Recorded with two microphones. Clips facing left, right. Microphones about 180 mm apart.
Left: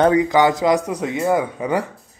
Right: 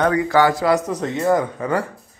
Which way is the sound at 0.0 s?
20° left (ahead or behind).